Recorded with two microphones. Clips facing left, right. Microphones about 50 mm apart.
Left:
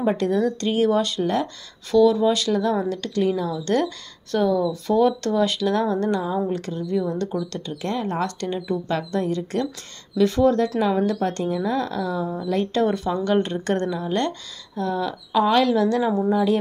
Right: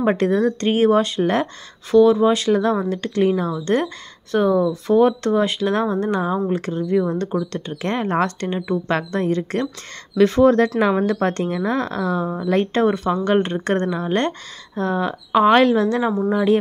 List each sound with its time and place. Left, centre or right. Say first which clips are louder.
0.0 s speech: right 3 dB; right
1.2 s speech: right 3 dB; right
1.9 s speech: right 3 dB; right
3.6 s speech: right 2 dB; right
8.4 s speech: right 3 dB; right